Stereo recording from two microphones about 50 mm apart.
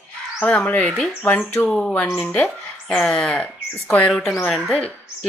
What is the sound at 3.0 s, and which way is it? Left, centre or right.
Speech, left.